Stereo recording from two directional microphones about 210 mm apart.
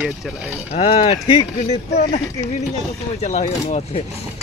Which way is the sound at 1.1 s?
20° left (ahead or behind).